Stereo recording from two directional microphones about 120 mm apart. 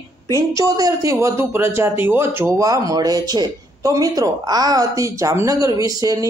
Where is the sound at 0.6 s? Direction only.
30° right (ahead or behind).